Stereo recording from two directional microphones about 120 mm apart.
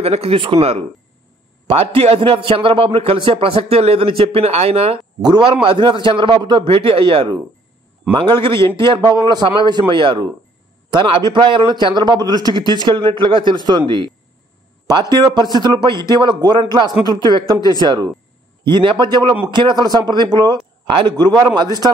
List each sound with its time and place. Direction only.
0.0 s a man's voice: 55° right (ahead or behind)
5.2 s a man's voice: 40° right (ahead or behind)
15.3 s a man's voice: 35° right (ahead or behind)